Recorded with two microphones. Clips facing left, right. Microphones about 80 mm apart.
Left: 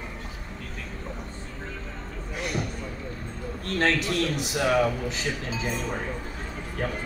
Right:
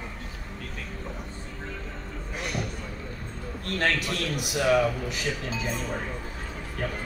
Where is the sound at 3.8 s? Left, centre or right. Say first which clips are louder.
Left 3 dB; left.